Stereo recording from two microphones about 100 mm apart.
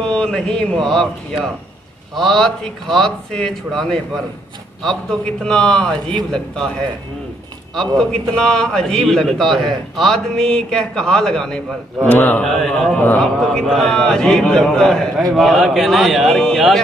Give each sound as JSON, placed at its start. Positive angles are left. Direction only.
{"t": 0.0, "sound": "a man's voice", "side_deg": 5}
{"t": 7.7, "sound": "a man's voice", "side_deg": 5}
{"t": 12.1, "sound": "a man's voice", "side_deg": 20}
{"t": 12.4, "sound": "a man's voice", "side_deg": 0}
{"t": 12.9, "sound": "a man's voice", "side_deg": 15}
{"t": 13.2, "sound": "a man's voice", "side_deg": 5}